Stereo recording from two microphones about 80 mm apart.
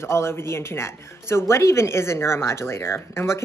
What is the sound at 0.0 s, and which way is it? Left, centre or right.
Speech, left.